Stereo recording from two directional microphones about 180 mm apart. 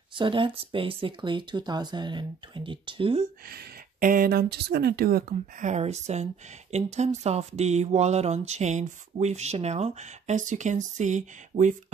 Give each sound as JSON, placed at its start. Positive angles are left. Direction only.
{"t": 0.1, "sound": "speech", "side_deg": -30}
{"t": 3.4, "sound": "speech", "side_deg": -55}
{"t": 5.3, "sound": "speech", "side_deg": -40}